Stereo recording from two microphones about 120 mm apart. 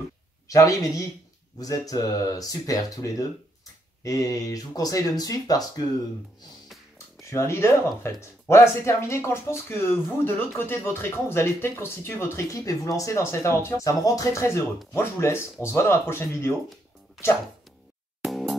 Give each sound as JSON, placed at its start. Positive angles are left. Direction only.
{"t": 0.5, "sound": "speech", "side_deg": 30}
{"t": 7.2, "sound": "speech", "side_deg": 25}
{"t": 17.2, "sound": "speech", "side_deg": 0}
{"t": 18.2, "sound": "music", "side_deg": 0}